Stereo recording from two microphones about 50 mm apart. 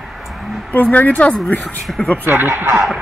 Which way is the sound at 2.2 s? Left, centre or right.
Right.